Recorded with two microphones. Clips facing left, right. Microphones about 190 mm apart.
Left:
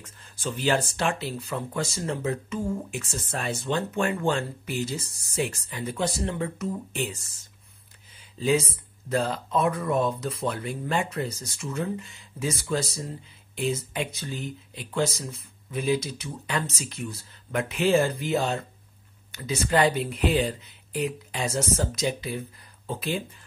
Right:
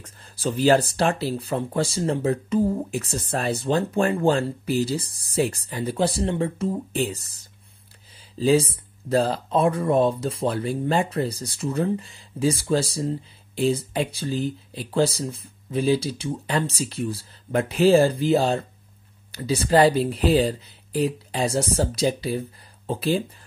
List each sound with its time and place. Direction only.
0.0 s speech: 35° right (ahead or behind)